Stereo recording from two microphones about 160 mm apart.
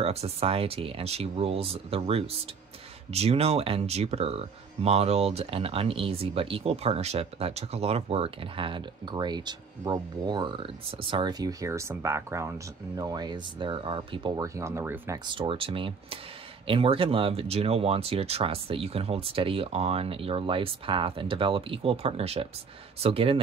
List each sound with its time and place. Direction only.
0.0 s speech: 40° right (ahead or behind); by 15.1 s 15° right (ahead or behind)
15.2 s speech: 35° right (ahead or behind)